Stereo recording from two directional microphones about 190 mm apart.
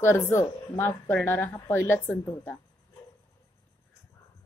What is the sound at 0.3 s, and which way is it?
A woman's voice, 15° left (ahead or behind).